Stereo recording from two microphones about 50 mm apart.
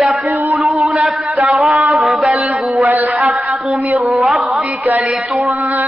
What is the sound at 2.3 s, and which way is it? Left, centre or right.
Mantra, right.